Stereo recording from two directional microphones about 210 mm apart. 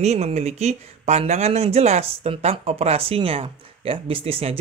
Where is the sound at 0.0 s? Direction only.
30° right (ahead or behind).